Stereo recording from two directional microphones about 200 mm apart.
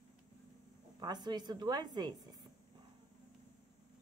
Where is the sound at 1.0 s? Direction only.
20° right (ahead or behind).